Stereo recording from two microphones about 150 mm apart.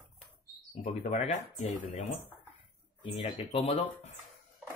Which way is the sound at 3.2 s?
35° left (ahead or behind).